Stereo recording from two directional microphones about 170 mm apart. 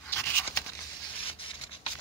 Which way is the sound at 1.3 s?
30° left (ahead or behind).